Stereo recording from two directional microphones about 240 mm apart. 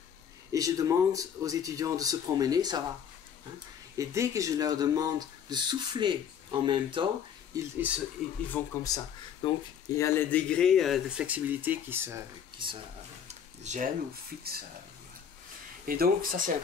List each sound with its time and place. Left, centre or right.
0.5 s speech: centre
3.9 s speech: centre
7.5 s speech: centre
8.5 s speech: centre
12.6 s speech: right
13.3 s a sound: right
15.8 s speech: right